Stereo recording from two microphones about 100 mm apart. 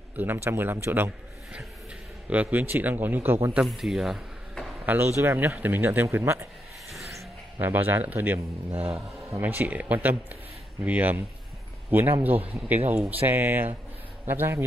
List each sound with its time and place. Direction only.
0.1 s speech: 20° right (ahead or behind)
2.2 s a man's voice: 15° right (ahead or behind)
3.6 s speech: centre (ahead or behind)
4.8 s speech: 25° right (ahead or behind)
6.9 s a sound: centre (ahead or behind)
7.5 s speech: 20° right (ahead or behind)
8.7 s a man's voice: 80° right
9.4 s a man's voice: 20° right (ahead or behind)